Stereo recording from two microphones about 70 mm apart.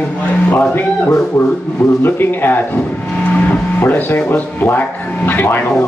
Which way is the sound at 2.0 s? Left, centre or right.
Left.